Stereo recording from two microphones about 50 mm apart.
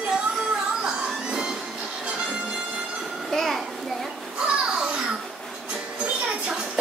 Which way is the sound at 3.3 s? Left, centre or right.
Centre.